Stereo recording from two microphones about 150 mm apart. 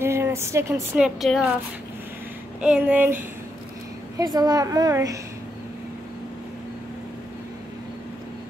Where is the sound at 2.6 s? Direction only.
10° right (ahead or behind).